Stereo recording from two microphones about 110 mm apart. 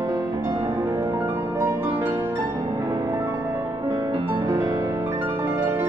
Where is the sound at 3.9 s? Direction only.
30° right (ahead or behind).